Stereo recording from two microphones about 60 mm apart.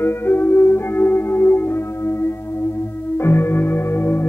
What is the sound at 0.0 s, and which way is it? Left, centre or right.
Music, left.